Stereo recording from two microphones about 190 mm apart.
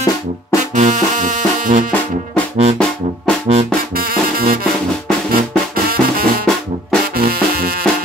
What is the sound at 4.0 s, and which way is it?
Music, 50° right (ahead or behind).